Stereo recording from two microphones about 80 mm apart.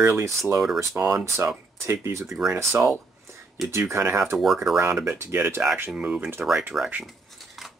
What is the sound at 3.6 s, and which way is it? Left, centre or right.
Speech, centre.